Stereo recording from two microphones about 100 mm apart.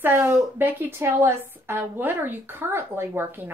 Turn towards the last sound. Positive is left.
turn(degrees=-20)  # may be behind; listen again after turning